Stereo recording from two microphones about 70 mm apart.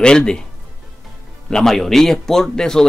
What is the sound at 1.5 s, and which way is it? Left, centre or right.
Speech, centre.